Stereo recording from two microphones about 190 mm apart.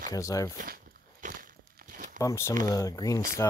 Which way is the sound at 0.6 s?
45° right (ahead or behind).